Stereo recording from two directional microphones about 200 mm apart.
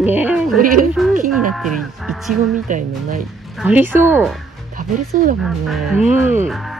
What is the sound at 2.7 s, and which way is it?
Speech, 40° right (ahead or behind).